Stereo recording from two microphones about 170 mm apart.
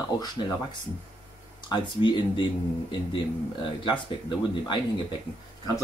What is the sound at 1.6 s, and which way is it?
Speech, 25° left (ahead or behind).